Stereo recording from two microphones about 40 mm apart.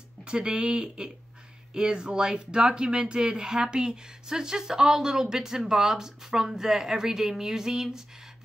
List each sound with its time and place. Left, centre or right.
0.2 s speech: right